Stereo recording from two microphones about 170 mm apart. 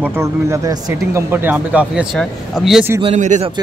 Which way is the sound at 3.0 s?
45° right (ahead or behind).